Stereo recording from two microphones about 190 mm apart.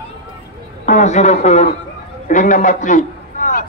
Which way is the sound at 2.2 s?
40° left (ahead or behind).